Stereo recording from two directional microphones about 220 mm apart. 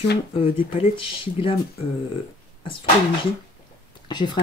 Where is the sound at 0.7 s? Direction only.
25° left (ahead or behind).